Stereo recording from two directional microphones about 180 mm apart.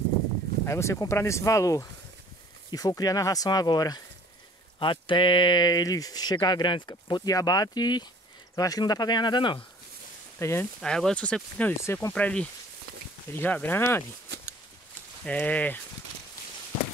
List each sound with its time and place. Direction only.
0.7 s speech: 15° left (ahead or behind)
10.4 s speech: 15° left (ahead or behind)
10.8 s speech: 5° left (ahead or behind)
15.2 s speech: 10° left (ahead or behind)